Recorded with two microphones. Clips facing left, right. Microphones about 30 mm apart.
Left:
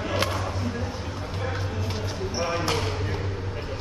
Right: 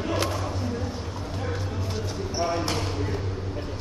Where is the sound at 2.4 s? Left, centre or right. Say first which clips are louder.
Even; left.